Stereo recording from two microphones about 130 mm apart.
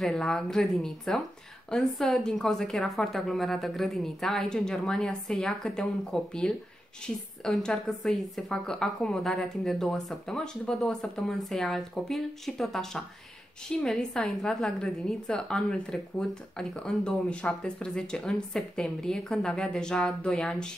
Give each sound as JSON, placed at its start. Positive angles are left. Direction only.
{"t": 0.0, "sound": "a woman's voice", "side_deg": 5}